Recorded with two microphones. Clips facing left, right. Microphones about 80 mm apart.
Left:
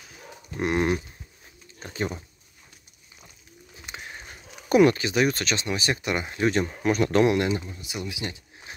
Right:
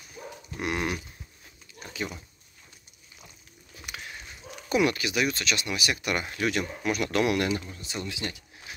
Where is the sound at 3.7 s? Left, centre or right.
Left.